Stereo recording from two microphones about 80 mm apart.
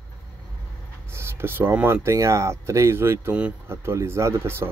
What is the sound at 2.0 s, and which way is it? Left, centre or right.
Speech, right.